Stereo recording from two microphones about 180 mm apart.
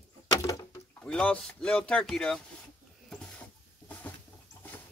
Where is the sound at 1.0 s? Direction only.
5° left (ahead or behind).